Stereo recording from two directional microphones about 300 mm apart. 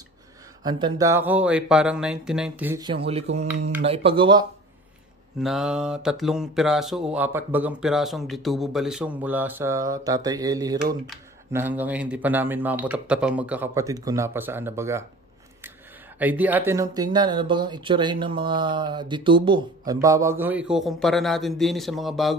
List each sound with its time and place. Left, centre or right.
0.7 s speech: centre
5.4 s speech: centre
16.2 s speech: centre